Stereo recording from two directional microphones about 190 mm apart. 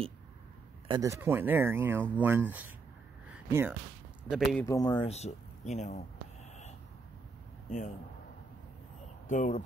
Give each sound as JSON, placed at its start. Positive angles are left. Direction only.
{"t": 0.8, "sound": "speech", "side_deg": -20}
{"t": 3.3, "sound": "a sound", "side_deg": -10}
{"t": 4.2, "sound": "speech", "side_deg": -5}
{"t": 4.6, "sound": "speech", "side_deg": 15}
{"t": 5.0, "sound": "speech", "side_deg": 35}
{"t": 9.3, "sound": "speech", "side_deg": 40}